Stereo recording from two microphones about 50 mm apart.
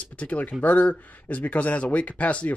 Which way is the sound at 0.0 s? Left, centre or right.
Left.